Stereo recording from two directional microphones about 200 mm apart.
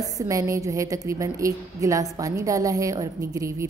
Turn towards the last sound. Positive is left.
turn(degrees=-15)  # may be behind; listen again after turning